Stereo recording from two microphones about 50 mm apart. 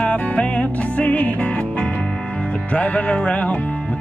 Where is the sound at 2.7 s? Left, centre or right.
Left.